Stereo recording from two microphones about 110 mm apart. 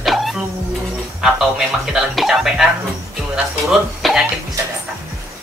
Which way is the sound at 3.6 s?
Centre (ahead or behind).